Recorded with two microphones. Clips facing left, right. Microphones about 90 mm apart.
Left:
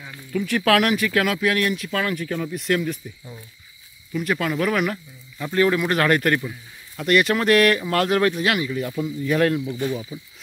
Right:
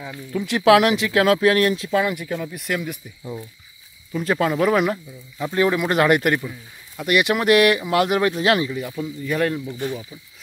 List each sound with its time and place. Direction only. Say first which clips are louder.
0.3 s speech: right 4 dB; 20° right (ahead or behind)
1.9 s speech: right 3 dB; 20° right (ahead or behind)
4.1 s speech: right 3 dB; 30° right (ahead or behind); by 8.4 s 15° right (ahead or behind)
8.4 s speech: right 4 dB; 30° right (ahead or behind)
8.7 s speech: left 2 dB; centre (ahead or behind)